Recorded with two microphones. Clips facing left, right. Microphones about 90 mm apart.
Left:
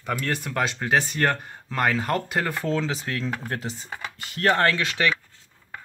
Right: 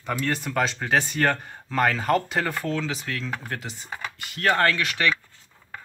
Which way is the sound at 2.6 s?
30° left (ahead or behind).